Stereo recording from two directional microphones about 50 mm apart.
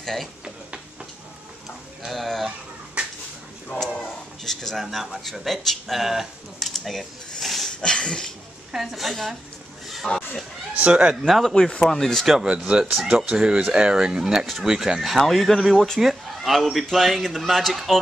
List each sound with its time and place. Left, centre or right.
0.0 s speech: centre
2.0 s a man's voice: centre
3.8 s a sound: centre
4.8 s speech: centre
7.8 s a sound: centre
8.7 s a man's voice: centre
10.9 s speech: right
11.1 s a man's voice: centre
11.9 s a sound: centre
12.4 s a man's voice: right; by 17.9 s centre